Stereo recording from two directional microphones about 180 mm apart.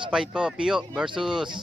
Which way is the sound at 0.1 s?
5° right (ahead or behind).